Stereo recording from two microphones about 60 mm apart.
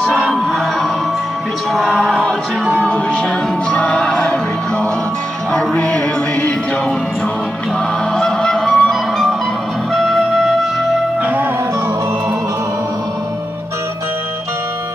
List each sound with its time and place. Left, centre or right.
0.2 s music: centre
1.7 s music: centre
2.8 s music: centre
5.5 s music: centre
8.2 s music: centre